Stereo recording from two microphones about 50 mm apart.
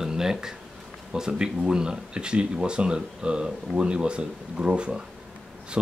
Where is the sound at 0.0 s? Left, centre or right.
Centre.